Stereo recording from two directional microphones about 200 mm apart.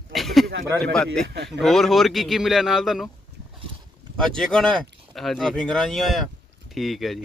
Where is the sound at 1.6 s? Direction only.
Centre (ahead or behind).